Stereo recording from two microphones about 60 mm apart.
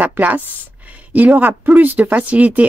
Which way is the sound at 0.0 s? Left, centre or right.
Right.